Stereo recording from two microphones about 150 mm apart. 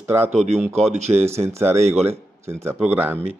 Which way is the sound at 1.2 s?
15° right (ahead or behind).